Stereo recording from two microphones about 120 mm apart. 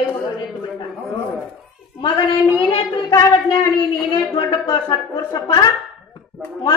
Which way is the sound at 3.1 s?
30° left (ahead or behind).